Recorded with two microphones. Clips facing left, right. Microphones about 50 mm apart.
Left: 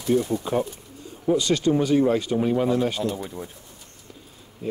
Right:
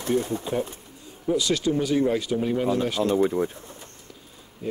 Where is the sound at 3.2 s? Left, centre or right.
Right.